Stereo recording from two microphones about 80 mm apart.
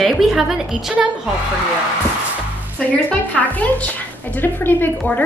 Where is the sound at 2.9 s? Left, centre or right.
Centre.